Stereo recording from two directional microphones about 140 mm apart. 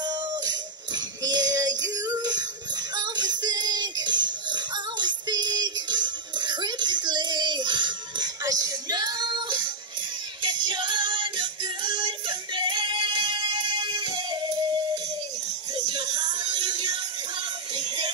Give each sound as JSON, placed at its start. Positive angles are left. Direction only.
{"t": 0.0, "sound": "music", "side_deg": -30}
{"t": 15.7, "sound": "music", "side_deg": -30}